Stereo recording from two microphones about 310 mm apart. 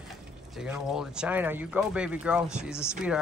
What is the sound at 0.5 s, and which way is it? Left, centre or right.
Speech, centre.